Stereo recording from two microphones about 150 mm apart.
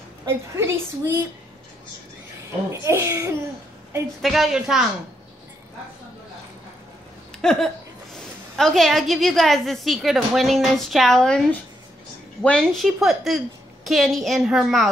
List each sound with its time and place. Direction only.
0.2 s a woman's voice: 20° right (ahead or behind)
2.7 s a woman's voice: 20° right (ahead or behind)
4.2 s a woman's voice: centre (ahead or behind)
7.4 s a woman's voice: 5° left (ahead or behind)